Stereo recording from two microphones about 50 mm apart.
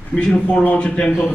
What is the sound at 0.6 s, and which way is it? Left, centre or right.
Speech, left.